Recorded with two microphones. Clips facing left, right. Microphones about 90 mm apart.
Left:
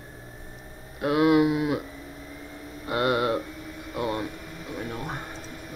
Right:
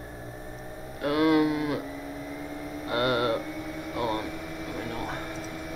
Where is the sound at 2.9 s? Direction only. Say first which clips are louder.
Left 2 dB; 5° left (ahead or behind).